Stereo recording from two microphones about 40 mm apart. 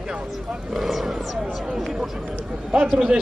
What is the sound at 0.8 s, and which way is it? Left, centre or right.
Speech, centre.